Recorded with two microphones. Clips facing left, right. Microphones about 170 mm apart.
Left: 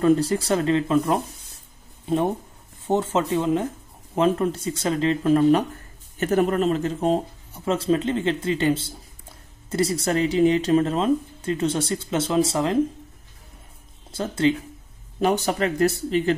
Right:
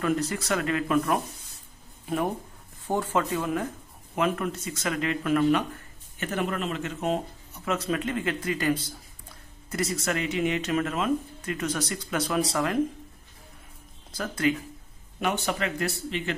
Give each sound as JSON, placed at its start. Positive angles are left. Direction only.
{"t": 0.0, "sound": "speech", "side_deg": 30}
{"t": 14.1, "sound": "speech", "side_deg": 25}